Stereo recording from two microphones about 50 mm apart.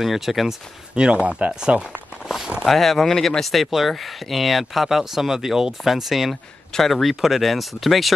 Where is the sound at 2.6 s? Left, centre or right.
Centre.